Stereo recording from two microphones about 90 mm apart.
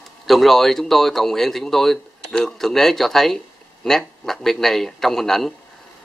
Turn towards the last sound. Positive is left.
turn(degrees=5)  # may be behind; listen again after turning